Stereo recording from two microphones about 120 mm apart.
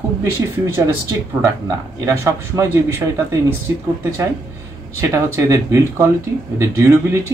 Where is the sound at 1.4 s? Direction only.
25° right (ahead or behind).